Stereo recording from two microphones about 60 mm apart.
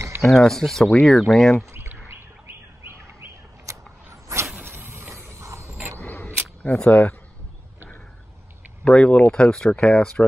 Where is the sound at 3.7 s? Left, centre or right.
Right.